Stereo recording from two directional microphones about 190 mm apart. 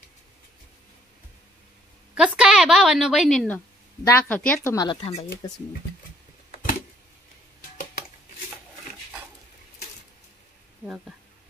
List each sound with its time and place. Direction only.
2.1 s a woman's voice: 5° right (ahead or behind)
4.7 s speech: 25° left (ahead or behind)